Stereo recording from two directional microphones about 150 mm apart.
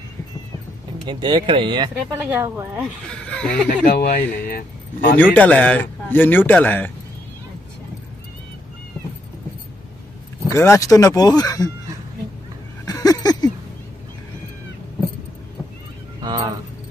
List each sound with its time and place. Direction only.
1.0 s speech: 35° right (ahead or behind)
2.1 s speech: 15° right (ahead or behind)
3.1 s a man's voice: 5° left (ahead or behind)
3.8 s speech: 75° left (ahead or behind)
5.1 s a man's voice: 10° left (ahead or behind)
10.4 s speech: 20° left (ahead or behind)
12.8 s a sound: 25° left (ahead or behind)
16.2 s a sound: 25° right (ahead or behind)